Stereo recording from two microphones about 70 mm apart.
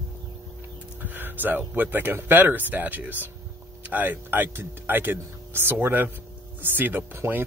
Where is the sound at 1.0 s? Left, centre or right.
Right.